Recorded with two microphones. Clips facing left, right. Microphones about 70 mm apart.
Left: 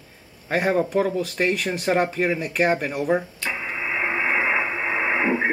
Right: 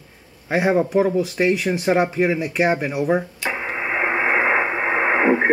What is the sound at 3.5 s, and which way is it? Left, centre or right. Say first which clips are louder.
Radio: right 3 dB; right.